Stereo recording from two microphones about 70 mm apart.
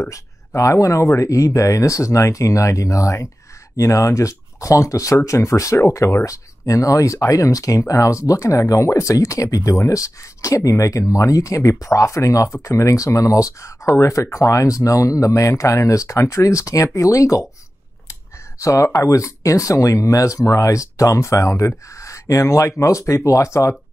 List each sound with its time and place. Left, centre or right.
0.0 s speech: left
18.6 s speech: left